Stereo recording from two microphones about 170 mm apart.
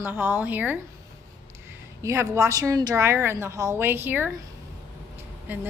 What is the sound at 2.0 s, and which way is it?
A woman's voice, 15° right (ahead or behind).